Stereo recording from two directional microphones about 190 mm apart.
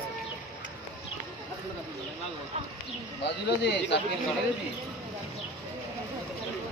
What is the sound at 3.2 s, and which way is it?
Speech, 65° left (ahead or behind).